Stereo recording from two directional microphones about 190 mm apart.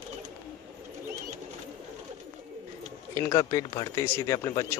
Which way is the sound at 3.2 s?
20° left (ahead or behind).